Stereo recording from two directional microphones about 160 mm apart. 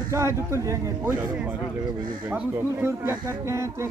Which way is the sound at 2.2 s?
10° right (ahead or behind).